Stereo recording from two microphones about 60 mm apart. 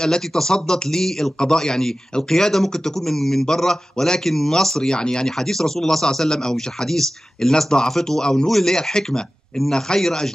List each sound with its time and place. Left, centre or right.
0.0 s a man's voice: centre